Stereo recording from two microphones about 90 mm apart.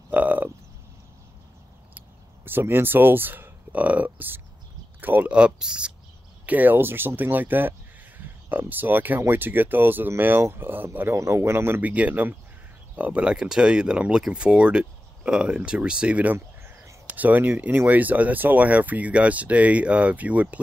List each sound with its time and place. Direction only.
0.1 s frog: 20° right (ahead or behind)
2.0 s speech: 25° right (ahead or behind)
16.3 s a sound: 30° right (ahead or behind)
17.1 s speech: 20° right (ahead or behind)